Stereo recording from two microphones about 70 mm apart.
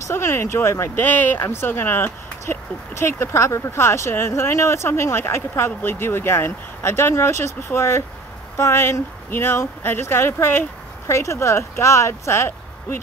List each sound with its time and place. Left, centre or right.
0.1 s speech: left
1.0 s speech: left